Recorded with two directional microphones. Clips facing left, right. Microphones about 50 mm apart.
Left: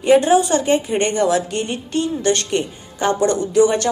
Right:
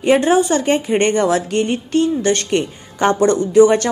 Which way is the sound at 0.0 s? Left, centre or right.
Right.